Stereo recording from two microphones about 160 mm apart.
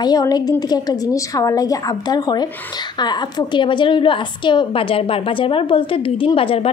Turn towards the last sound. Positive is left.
turn(degrees=35)  # may be behind; listen again after turning